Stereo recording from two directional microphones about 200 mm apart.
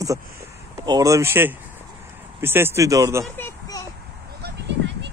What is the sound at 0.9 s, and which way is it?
Speech, 15° right (ahead or behind).